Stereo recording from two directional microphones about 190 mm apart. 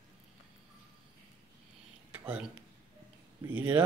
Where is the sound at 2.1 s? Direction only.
10° right (ahead or behind).